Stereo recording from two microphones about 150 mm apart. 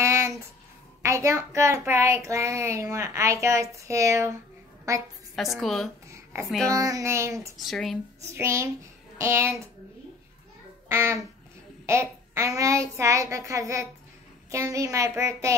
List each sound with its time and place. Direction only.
0.0 s a sound: 20° right (ahead or behind)
1.0 s a child's voice: 20° right (ahead or behind)
5.6 s speech: centre (ahead or behind)
6.0 s a sound: 20° right (ahead or behind)
6.7 s a child's voice: 25° right (ahead or behind)
7.6 s speech: centre (ahead or behind)
8.3 s a child's voice: 20° right (ahead or behind)
10.9 s a child's voice: 15° right (ahead or behind)